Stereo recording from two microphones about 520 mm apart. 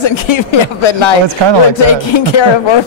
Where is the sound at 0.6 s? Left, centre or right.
Left.